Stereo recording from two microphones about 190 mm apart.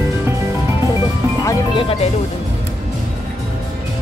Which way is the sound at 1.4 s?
25° left (ahead or behind).